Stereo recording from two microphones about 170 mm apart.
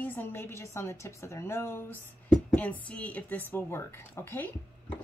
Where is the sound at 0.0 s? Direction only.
10° left (ahead or behind).